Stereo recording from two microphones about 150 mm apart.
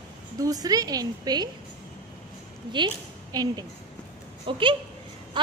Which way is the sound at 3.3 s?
25° right (ahead or behind).